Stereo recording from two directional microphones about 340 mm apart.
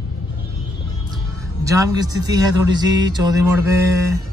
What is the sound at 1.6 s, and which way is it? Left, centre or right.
Speech, centre.